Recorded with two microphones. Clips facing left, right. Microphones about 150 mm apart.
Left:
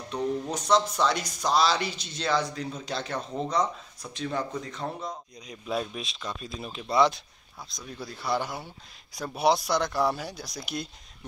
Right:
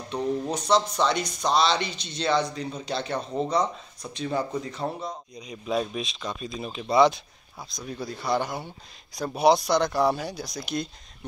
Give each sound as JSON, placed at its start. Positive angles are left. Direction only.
{"t": 0.1, "sound": "speech", "side_deg": 0}
{"t": 8.5, "sound": "speech", "side_deg": -20}
{"t": 9.1, "sound": "speech", "side_deg": 0}